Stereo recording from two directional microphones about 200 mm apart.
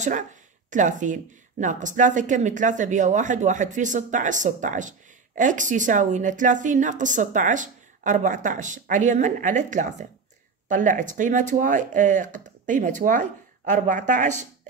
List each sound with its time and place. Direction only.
0.0 s speech: 40° right (ahead or behind)